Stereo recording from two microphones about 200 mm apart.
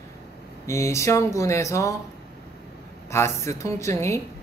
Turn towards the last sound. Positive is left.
turn(degrees=15)  # may be behind; listen again after turning